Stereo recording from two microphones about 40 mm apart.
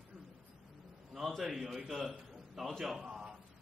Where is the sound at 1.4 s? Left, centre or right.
Centre.